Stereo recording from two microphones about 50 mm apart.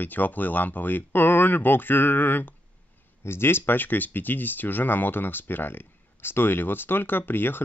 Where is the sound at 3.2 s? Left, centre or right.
Left.